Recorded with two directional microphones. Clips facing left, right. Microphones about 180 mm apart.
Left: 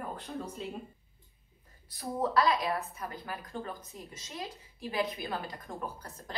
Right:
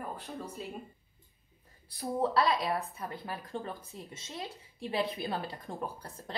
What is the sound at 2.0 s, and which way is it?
A woman's voice, 30° right (ahead or behind).